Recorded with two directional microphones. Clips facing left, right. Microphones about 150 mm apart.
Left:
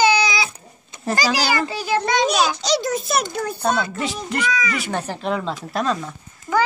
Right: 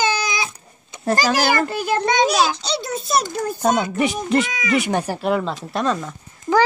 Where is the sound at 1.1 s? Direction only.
50° right (ahead or behind).